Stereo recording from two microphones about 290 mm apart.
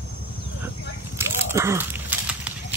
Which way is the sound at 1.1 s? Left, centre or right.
Centre.